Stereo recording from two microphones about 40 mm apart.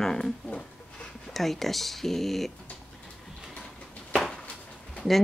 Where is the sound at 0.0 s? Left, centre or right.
Centre.